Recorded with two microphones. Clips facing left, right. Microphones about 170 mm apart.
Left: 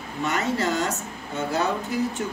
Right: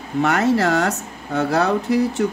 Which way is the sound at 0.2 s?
70° right (ahead or behind).